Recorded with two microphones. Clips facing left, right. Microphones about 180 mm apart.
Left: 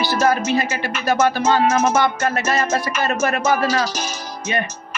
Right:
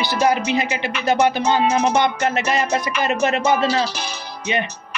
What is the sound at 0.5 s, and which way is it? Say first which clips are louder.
Music: even; 20° right (ahead or behind).